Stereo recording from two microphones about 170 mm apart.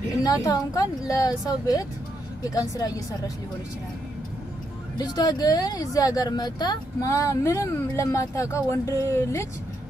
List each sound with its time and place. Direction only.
0.2 s speech: 20° left (ahead or behind)
4.9 s speech: 25° left (ahead or behind)